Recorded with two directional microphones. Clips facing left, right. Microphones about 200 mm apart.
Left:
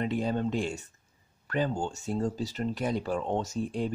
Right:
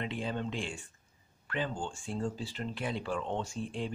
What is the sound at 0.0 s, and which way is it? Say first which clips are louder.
Speech: left 7 dB; 40° left (ahead or behind).